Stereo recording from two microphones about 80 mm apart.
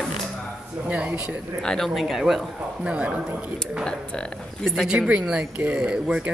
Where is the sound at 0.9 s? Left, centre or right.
Centre.